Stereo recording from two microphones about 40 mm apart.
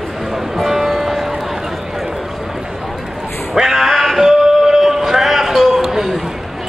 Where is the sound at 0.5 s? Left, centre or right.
Centre.